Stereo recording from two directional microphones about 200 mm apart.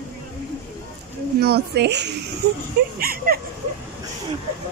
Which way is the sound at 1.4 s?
55° right (ahead or behind).